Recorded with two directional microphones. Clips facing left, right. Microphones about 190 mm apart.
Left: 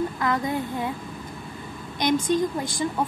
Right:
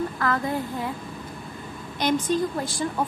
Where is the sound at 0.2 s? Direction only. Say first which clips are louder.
Even; 15° left (ahead or behind).